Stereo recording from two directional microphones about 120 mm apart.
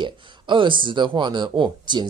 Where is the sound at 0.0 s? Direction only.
45° right (ahead or behind).